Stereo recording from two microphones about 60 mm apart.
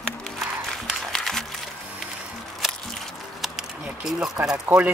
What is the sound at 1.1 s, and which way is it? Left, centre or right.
Music, centre.